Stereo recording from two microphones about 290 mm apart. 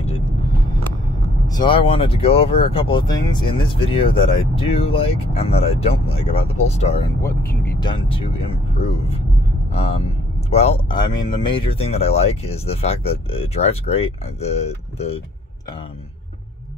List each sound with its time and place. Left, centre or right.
1.5 s speech: centre
9.7 s speech: left